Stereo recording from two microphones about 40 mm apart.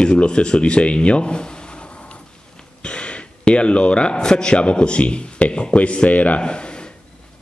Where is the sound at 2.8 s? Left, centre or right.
Left.